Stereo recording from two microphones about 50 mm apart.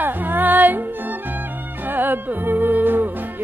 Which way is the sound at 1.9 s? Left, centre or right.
Right.